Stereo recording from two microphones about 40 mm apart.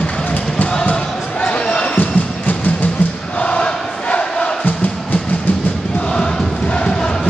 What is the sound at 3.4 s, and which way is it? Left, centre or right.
Crowd, left.